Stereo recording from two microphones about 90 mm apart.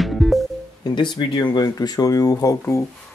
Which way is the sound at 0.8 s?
60° left (ahead or behind).